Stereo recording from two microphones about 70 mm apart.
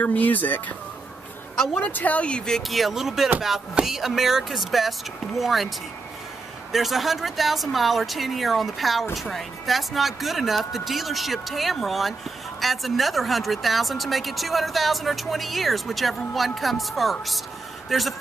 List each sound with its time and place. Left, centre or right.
0.0 s speech: left; by 5.7 s centre
6.7 s a man's voice: centre